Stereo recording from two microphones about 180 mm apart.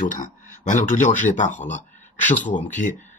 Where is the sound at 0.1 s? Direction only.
45° left (ahead or behind).